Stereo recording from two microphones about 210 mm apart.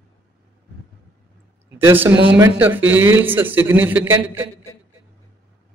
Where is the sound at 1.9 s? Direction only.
10° right (ahead or behind).